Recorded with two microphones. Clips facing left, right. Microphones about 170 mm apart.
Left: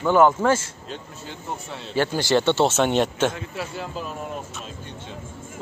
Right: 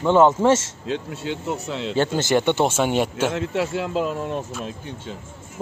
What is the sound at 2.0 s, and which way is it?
Speech, 20° right (ahead or behind).